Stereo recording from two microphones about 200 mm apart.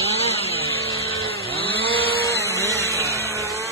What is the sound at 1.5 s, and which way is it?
Chainsaw, 25° left (ahead or behind).